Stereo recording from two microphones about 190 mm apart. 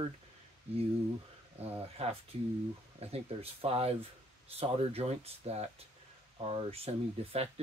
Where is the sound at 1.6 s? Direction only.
35° right (ahead or behind).